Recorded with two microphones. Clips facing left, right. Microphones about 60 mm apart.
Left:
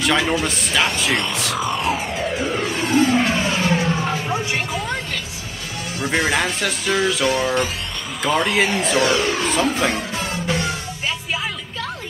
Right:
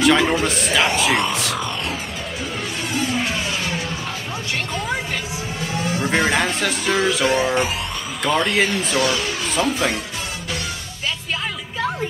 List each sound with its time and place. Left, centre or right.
0.0 s speech: centre
3.1 s music: left
6.0 s speech: centre
7.2 s music: centre
8.2 s speech: centre
9.5 s speech: centre